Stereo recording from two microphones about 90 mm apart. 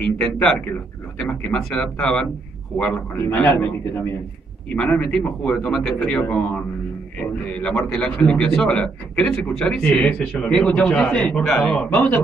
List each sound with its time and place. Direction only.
0.0 s a man's voice: 10° left (ahead or behind)
4.7 s a man's voice: 10° left (ahead or behind)